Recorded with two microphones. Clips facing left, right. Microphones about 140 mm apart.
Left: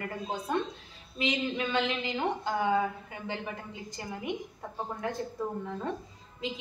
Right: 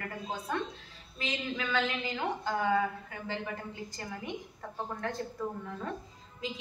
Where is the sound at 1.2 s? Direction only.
20° left (ahead or behind).